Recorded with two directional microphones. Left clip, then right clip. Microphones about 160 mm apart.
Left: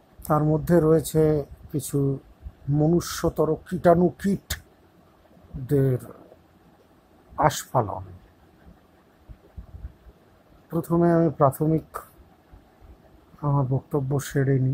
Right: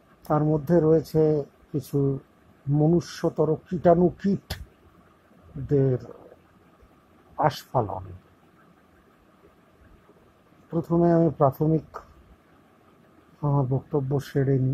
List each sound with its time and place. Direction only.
0.2 s speech: 25° left (ahead or behind)
5.8 s speech: 20° left (ahead or behind)
7.3 s speech: 25° left (ahead or behind)
10.7 s speech: 25° left (ahead or behind)
13.4 s speech: 20° left (ahead or behind)